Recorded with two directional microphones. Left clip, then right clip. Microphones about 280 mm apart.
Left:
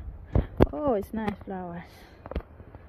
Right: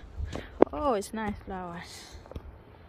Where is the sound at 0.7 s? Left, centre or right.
Centre.